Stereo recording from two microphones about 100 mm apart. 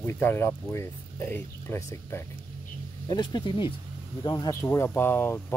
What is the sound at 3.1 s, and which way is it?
Speech, 45° left (ahead or behind).